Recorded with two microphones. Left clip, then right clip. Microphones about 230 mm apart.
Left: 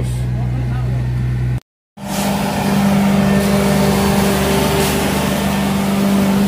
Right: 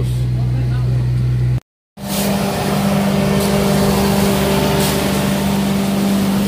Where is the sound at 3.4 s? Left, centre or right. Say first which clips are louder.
Even; centre; by 5.3 s left.